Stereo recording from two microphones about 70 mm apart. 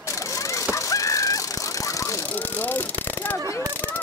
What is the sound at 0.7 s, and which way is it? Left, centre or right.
Goose, left.